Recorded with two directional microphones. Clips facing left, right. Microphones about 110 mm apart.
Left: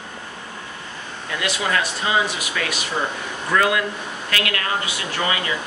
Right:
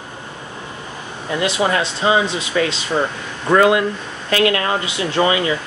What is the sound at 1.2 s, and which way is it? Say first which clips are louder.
Speech: right 6 dB; 25° right (ahead or behind).